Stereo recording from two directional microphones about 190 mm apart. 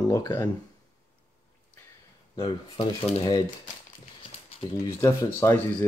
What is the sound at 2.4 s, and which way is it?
Speech, 25° left (ahead or behind).